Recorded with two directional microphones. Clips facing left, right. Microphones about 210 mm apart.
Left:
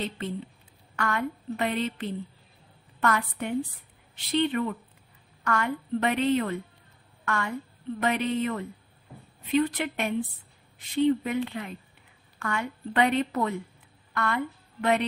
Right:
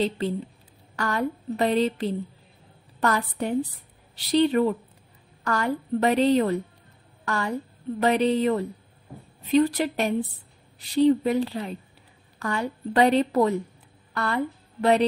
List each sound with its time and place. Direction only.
0.9 s a woman's voice: 35° right (ahead or behind)